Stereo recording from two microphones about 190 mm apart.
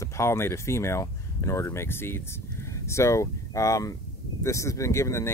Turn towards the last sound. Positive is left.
turn(degrees=15)  # may be behind; listen again after turning